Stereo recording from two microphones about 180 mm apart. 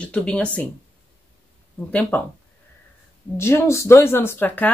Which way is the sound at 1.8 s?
10° left (ahead or behind).